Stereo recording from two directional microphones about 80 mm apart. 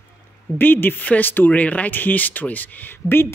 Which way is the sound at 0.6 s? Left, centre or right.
Left.